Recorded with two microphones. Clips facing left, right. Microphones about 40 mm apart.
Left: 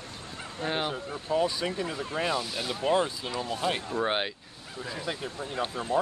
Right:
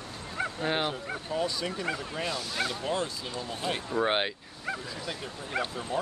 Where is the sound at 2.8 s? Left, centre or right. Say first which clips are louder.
Left 5 dB; left.